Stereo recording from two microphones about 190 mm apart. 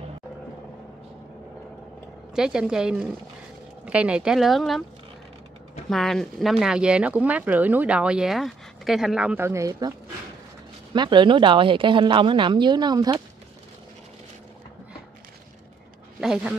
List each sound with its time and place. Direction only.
2.3 s speech: 5° right (ahead or behind)
5.9 s speech: centre (ahead or behind); by 13.2 s 20° right (ahead or behind)
16.2 s speech: 5° right (ahead or behind)